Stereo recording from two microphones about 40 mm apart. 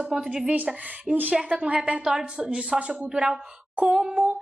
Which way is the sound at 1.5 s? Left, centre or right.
Right.